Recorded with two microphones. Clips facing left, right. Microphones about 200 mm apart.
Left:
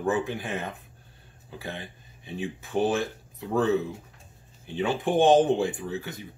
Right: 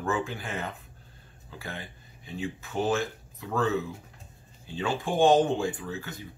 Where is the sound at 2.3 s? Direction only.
20° left (ahead or behind).